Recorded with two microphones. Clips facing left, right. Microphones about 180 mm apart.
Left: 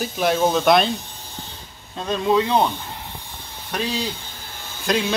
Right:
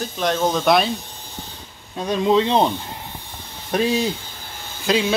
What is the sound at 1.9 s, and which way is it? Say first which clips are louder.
Speech: right 2 dB; 15° right (ahead or behind).